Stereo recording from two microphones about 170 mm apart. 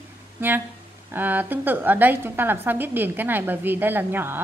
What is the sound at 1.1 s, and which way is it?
A woman's voice, 10° right (ahead or behind).